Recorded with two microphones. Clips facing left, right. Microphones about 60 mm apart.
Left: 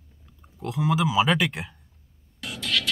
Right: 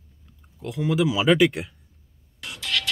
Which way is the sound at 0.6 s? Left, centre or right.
Centre.